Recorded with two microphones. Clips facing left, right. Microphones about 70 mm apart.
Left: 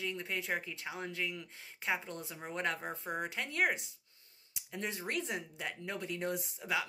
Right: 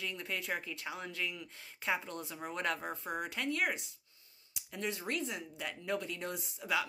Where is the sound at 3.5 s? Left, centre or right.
Left.